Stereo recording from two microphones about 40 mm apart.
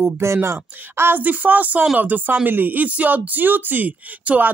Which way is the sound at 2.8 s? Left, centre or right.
Right.